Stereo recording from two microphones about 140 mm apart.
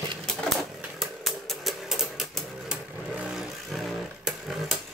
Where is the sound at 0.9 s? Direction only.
Centre (ahead or behind).